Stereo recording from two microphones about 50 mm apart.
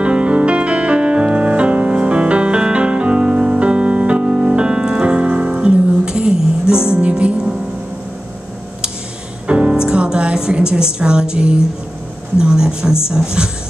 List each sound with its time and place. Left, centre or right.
0.0 s music: right
9.5 s music: right
12.4 s a woman's voice: centre